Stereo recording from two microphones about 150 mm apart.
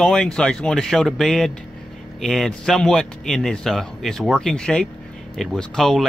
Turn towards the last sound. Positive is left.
turn(degrees=5)  # may be behind; listen again after turning